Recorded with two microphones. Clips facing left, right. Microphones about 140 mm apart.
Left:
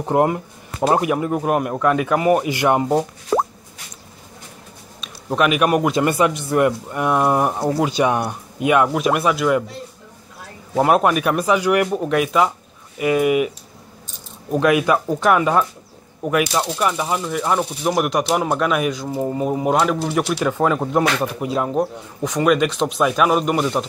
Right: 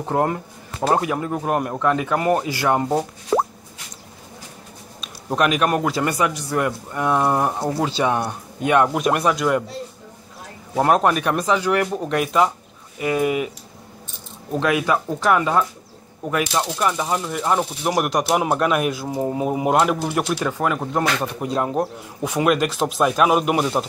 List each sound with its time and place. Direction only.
0.0 s a man's voice: 15° left (ahead or behind)
5.0 s a man's voice: centre (ahead or behind)
10.8 s a man's voice: 5° left (ahead or behind)
14.6 s a man's voice: 15° left (ahead or behind)
20.5 s speech: 20° left (ahead or behind)
21.2 s speech: 5° left (ahead or behind)